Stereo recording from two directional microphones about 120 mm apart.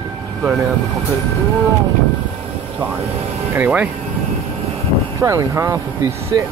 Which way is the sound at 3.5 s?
15° right (ahead or behind).